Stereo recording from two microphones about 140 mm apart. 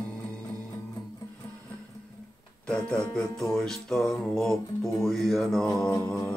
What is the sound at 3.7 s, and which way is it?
Speech, 5° left (ahead or behind).